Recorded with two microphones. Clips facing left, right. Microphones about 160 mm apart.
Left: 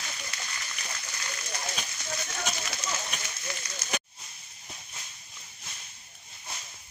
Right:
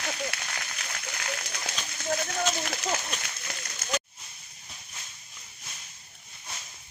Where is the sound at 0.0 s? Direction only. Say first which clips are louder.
Right 8 dB; 65° right (ahead or behind).